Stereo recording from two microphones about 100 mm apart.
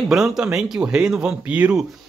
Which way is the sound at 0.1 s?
5° right (ahead or behind).